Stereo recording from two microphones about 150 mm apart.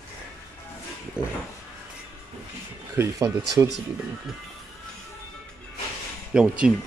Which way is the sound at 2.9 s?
20° right (ahead or behind).